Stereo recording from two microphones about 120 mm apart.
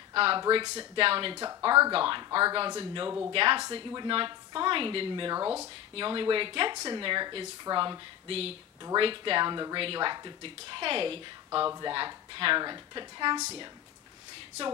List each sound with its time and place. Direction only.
0.1 s speech: 45° right (ahead or behind)
1.4 s a woman's voice: 35° right (ahead or behind)
8.3 s speech: 55° right (ahead or behind)
8.9 s a woman's voice: 45° right (ahead or behind)